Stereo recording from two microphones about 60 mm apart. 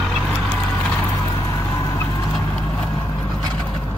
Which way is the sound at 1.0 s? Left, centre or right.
Left.